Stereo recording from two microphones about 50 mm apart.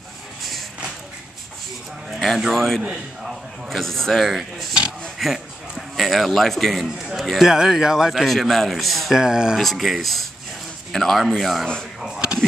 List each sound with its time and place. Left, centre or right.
0.4 s a sound: centre
2.0 s speech: centre
7.0 s speech: centre
8.3 s speech: centre
9.1 s speech: centre
9.6 s speech: centre
12.1 s a sound: centre